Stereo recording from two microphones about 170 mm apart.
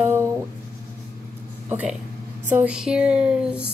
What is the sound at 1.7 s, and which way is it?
Speech, 10° right (ahead or behind).